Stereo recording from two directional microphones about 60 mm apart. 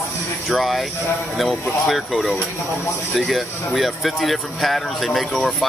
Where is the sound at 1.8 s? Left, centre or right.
Centre.